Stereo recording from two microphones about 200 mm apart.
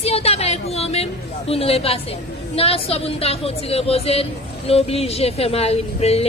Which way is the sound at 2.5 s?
30° left (ahead or behind).